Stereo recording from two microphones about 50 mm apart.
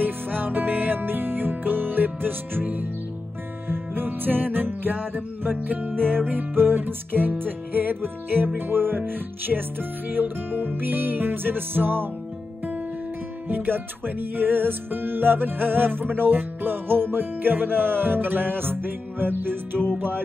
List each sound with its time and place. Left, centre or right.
0.0 s music: right
13.5 s music: right